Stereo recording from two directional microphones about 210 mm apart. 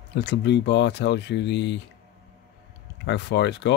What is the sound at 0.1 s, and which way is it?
Speech, 55° left (ahead or behind).